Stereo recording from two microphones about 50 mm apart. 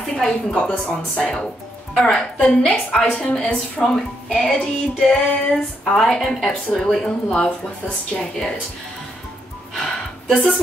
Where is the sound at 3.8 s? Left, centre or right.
Centre.